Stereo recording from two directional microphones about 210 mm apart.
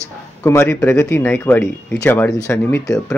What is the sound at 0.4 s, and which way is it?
Speech, 10° left (ahead or behind).